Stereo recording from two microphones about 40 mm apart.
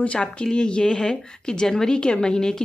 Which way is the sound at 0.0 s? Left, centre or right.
Left.